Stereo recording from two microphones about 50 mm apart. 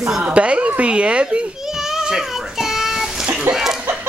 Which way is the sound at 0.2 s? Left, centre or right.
Right.